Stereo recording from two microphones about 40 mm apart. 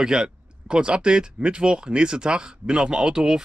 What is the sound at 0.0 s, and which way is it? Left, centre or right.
Speech, centre.